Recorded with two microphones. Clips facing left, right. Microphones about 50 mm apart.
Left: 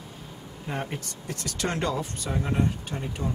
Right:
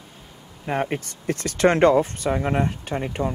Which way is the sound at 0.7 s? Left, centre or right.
Right.